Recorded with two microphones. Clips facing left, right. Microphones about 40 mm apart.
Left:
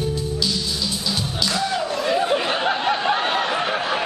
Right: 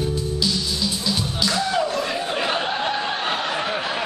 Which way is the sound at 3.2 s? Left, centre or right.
Centre.